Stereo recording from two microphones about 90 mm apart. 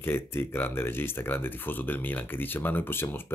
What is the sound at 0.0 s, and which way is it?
Speech, 25° left (ahead or behind).